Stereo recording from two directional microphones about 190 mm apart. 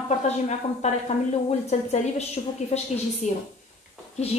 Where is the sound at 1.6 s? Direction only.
35° left (ahead or behind).